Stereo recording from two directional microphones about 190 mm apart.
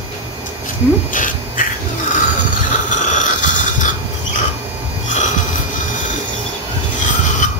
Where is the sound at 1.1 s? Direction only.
45° left (ahead or behind).